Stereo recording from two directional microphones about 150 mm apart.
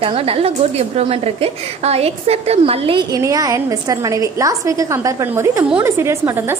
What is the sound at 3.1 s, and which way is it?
A woman's voice, 25° right (ahead or behind).